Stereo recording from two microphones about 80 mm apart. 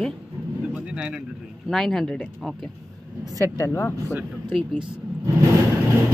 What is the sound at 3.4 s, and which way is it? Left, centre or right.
Speech, left.